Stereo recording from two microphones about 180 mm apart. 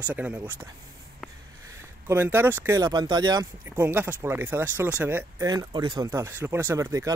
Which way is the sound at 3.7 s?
10° right (ahead or behind).